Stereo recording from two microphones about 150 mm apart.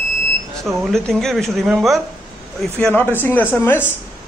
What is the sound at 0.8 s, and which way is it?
A man's voice, 5° left (ahead or behind).